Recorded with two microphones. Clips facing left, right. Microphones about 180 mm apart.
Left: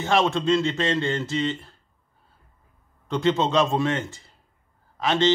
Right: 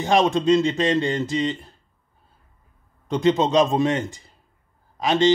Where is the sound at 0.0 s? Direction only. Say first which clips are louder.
Right 3 dB; 15° right (ahead or behind).